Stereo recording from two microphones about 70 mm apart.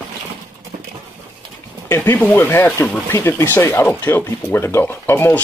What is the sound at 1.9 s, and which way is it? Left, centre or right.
Speech, left.